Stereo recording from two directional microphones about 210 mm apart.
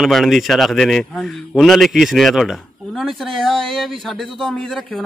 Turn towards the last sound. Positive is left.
turn(degrees=0)  # may be behind; listen again after turning